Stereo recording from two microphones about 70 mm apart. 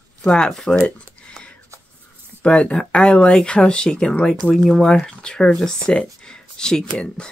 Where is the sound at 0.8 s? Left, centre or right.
Centre.